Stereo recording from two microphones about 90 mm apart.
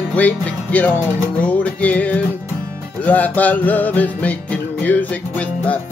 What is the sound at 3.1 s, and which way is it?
Music, 20° left (ahead or behind).